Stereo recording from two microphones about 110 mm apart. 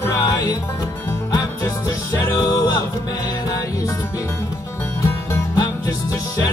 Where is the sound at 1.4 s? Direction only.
35° left (ahead or behind).